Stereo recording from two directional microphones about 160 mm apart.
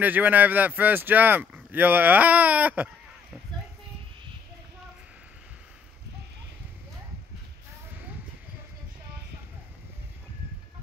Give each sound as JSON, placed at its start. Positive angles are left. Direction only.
{"t": 0.0, "sound": "speech", "side_deg": -10}